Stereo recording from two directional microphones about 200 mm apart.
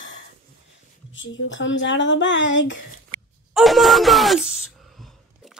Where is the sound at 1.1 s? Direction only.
65° left (ahead or behind).